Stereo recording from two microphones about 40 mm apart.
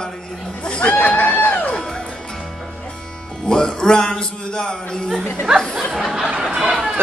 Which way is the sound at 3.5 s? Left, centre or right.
Centre.